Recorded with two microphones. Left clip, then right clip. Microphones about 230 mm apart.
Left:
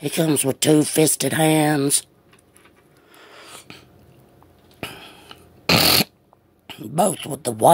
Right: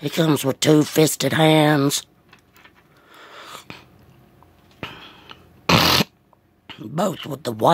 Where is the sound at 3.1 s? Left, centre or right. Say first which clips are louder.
Right 3 dB; centre.